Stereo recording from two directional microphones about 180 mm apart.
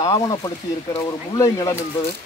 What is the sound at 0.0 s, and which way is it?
Speech, 25° left (ahead or behind).